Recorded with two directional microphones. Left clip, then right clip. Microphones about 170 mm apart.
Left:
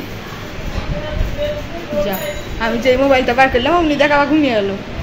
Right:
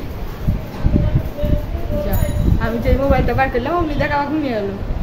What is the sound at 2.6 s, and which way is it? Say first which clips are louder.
Speech: left 6 dB; 15° left (ahead or behind).